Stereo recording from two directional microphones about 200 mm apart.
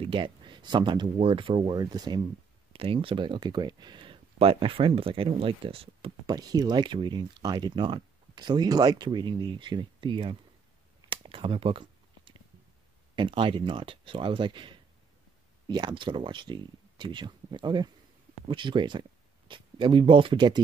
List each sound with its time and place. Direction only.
0.0 s speech: 25° right (ahead or behind)
11.0 s a sound: 25° right (ahead or behind)
13.1 s speech: 25° right (ahead or behind)